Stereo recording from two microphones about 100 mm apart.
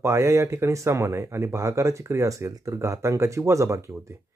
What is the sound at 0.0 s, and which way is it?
Speech, 25° right (ahead or behind).